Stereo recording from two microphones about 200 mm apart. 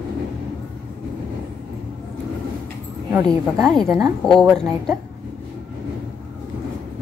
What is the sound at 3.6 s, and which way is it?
Speech, centre (ahead or behind).